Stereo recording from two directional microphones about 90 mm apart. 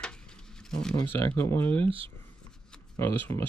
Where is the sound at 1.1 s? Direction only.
25° left (ahead or behind).